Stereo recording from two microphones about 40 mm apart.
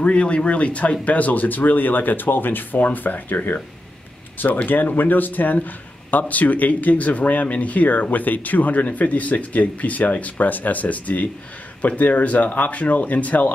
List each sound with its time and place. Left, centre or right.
0.0 s a man's voice: left
4.6 s a man's voice: left